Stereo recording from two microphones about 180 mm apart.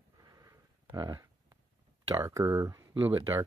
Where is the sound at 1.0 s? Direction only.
20° right (ahead or behind).